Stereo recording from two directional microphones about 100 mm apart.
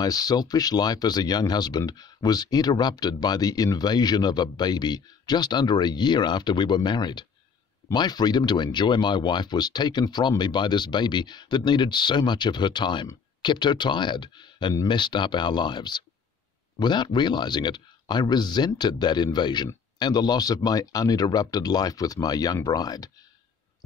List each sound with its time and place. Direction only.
0.0 s speech: 40° left (ahead or behind)